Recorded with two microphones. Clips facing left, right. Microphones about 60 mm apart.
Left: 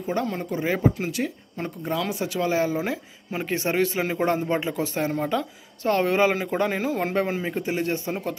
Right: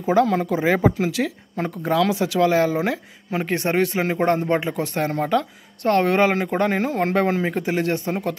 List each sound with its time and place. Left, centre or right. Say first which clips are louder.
0.0 s speech: right 9 dB; right